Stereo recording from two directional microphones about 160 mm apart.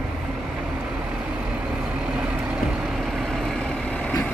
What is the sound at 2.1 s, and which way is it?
Vehicle, 5° right (ahead or behind).